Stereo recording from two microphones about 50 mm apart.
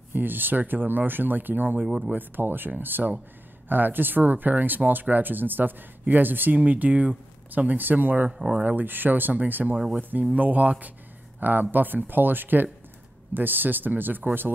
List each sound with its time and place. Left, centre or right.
0.1 s speech: right
8.3 s speech: centre
8.5 s speech: right
9.9 s speech: right